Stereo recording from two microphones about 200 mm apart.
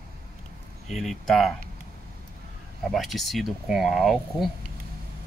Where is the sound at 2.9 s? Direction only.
Centre (ahead or behind).